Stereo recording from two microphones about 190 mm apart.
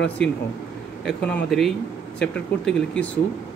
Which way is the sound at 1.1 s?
5° left (ahead or behind).